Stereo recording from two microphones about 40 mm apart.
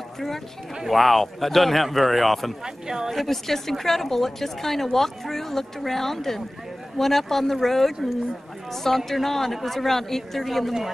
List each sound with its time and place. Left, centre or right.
0.8 s speech: centre
2.6 s speech: centre
3.2 s a woman's voice: centre